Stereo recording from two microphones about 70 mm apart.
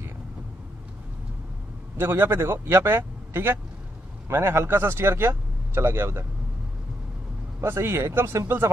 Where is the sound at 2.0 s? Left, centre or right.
Right.